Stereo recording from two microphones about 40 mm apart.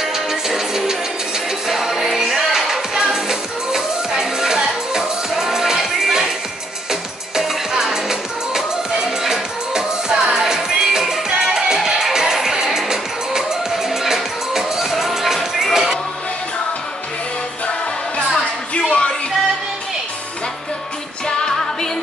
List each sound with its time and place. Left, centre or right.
0.0 s music: centre
18.3 s a sound: centre
21.3 s music: centre